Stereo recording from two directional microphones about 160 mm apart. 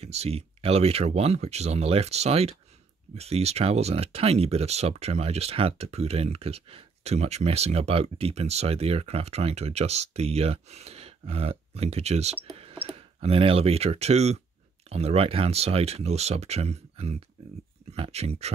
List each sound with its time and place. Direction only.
0.0 s speech: 40° right (ahead or behind)